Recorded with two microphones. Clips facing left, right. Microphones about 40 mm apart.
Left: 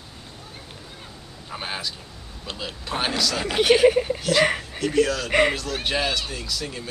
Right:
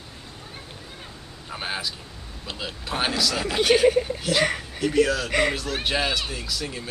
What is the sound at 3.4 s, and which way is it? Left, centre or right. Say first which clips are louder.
Speech: left 2 dB; centre.